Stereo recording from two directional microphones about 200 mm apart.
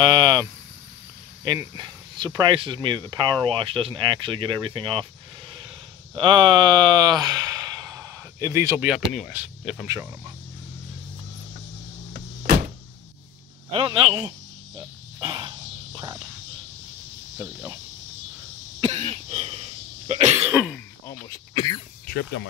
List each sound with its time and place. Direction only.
0.0 s vehicle: 20° right (ahead or behind)
1.4 s speech: 20° right (ahead or behind)
6.1 s speech: 25° right (ahead or behind)
12.1 s music: 45° right (ahead or behind)
13.7 s speech: 25° right (ahead or behind)
14.8 s cricket: 20° right (ahead or behind)
17.4 s speech: 15° right (ahead or behind)
18.8 s cough: 30° right (ahead or behind)
21.1 s speech: 20° left (ahead or behind)
22.0 s speech: 55° left (ahead or behind)